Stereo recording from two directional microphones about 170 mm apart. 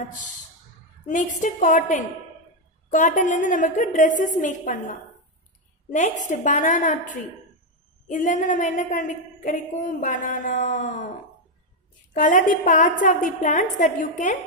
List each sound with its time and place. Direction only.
1.0 s a woman's voice: 45° left (ahead or behind)
5.9 s a woman's voice: 45° left (ahead or behind)
12.1 s a woman's voice: 50° left (ahead or behind)